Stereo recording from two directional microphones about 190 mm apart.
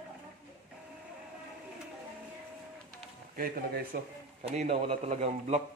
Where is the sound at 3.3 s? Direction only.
50° right (ahead or behind).